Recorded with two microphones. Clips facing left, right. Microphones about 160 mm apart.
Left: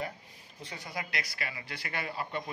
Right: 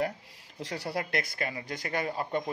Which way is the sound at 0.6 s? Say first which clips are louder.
Right 7 dB; 85° right.